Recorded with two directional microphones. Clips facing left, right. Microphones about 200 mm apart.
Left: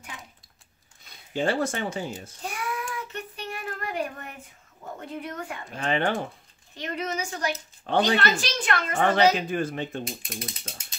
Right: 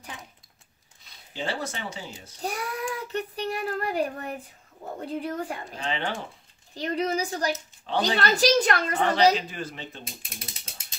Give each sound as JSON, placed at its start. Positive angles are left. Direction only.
{"t": 1.3, "sound": "speech", "side_deg": 50}
{"t": 2.4, "sound": "child singing", "side_deg": -35}
{"t": 5.0, "sound": "a woman's voice", "side_deg": -30}
{"t": 5.8, "sound": "speech", "side_deg": 55}
{"t": 6.7, "sound": "a woman's voice", "side_deg": -35}
{"t": 7.9, "sound": "speech", "side_deg": 50}
{"t": 8.2, "sound": "a woman's voice", "side_deg": -40}
{"t": 9.0, "sound": "speech", "side_deg": 50}